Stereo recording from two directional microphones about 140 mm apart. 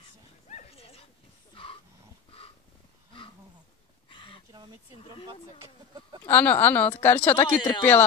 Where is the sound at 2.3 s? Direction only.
40° left (ahead or behind).